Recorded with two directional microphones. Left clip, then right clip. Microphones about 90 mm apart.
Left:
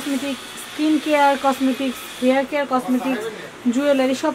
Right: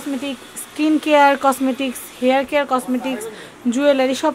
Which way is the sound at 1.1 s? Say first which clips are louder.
Right 4 dB; 85° right.